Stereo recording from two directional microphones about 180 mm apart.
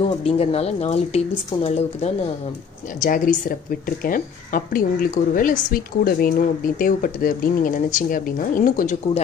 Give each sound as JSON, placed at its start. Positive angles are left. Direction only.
{"t": 0.0, "sound": "a woman's voice", "side_deg": 30}